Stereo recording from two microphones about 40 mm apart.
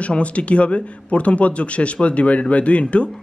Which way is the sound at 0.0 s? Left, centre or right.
Left.